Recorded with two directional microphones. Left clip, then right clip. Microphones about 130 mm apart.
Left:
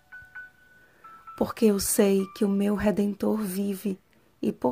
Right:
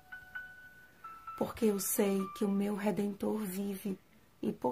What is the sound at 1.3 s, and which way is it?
A woman's voice, 50° left (ahead or behind).